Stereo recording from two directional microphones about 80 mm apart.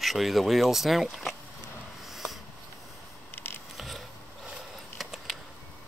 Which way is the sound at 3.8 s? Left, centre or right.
Centre.